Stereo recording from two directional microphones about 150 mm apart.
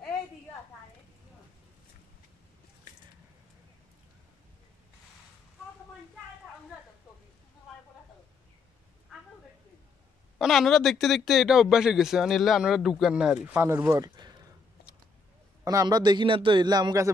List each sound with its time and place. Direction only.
10.4 s a man's voice: centre (ahead or behind); by 14.3 s 25° right (ahead or behind)
15.6 s a man's voice: 25° right (ahead or behind)